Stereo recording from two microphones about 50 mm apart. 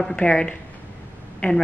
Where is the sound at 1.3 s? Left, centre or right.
Left.